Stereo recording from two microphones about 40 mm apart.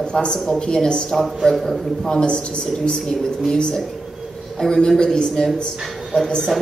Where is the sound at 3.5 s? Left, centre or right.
Left.